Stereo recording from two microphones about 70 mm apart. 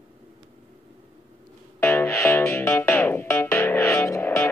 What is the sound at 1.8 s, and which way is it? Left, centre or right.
Music, left.